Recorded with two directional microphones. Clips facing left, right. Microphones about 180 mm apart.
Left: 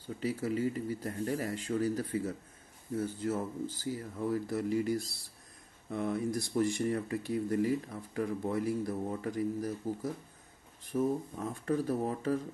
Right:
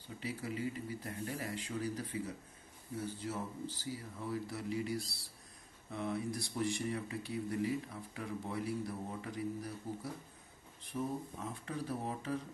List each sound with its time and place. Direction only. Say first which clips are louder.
0.2 s speech: left 8 dB; 45° left (ahead or behind)
11.5 s speech: left 10 dB; 45° left (ahead or behind)